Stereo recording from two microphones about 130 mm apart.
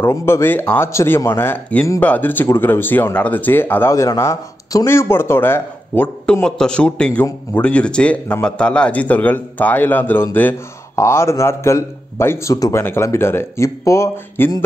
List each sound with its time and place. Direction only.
0.0 s a man's voice: 20° left (ahead or behind)